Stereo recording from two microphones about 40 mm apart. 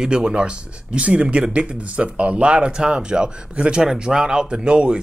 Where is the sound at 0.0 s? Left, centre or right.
Right.